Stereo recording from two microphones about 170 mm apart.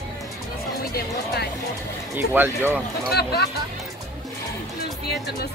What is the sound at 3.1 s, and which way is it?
Speech, 70° left (ahead or behind).